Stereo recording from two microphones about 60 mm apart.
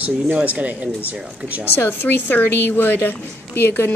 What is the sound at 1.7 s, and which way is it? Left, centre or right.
A woman's voice, left.